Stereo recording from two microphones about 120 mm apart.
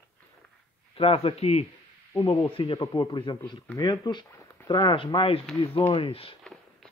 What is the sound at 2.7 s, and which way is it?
Speech, 30° left (ahead or behind).